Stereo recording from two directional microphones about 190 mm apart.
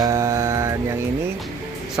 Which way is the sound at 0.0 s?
15° right (ahead or behind).